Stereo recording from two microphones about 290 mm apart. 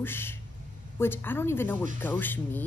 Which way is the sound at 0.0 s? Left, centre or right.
Centre.